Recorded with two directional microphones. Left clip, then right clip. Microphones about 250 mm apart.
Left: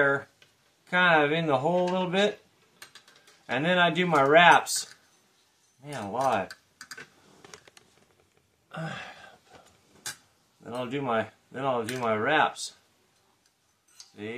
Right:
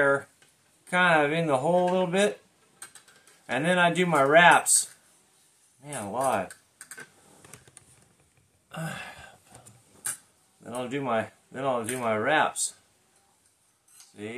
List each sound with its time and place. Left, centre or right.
0.8 s speech: centre
3.4 s speech: centre
8.6 s throat clearing: centre
10.6 s speech: centre